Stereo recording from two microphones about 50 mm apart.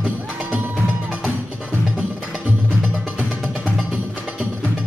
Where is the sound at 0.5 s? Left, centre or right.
Right.